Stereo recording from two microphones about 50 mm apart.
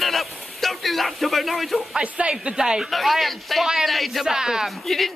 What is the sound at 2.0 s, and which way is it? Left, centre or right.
Speech, right.